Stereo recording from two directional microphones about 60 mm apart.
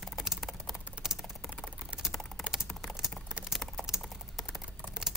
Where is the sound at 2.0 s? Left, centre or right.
Centre.